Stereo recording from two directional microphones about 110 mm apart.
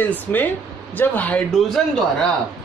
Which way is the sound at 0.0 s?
15° left (ahead or behind).